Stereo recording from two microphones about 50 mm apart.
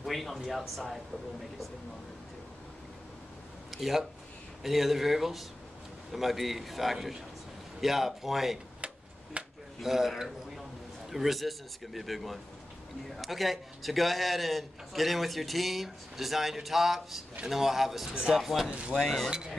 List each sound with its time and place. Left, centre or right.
0.0 s a man's voice: centre
3.7 s a man's voice: centre
9.4 s a sound: right
9.8 s a man's voice: centre
18.7 s speech: right
18.9 s a man's voice: centre